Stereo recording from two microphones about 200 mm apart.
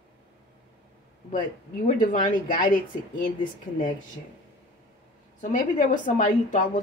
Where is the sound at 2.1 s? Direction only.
40° left (ahead or behind).